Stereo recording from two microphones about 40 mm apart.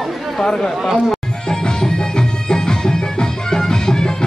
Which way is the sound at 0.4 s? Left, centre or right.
Centre.